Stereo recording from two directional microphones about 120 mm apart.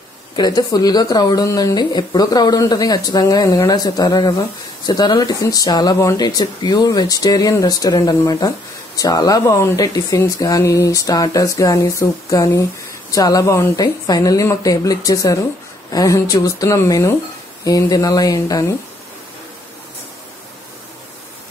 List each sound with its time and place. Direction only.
0.4 s a woman's voice: 35° left (ahead or behind)